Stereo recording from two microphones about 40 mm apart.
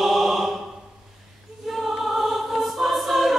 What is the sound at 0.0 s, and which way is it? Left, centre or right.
Choir, centre.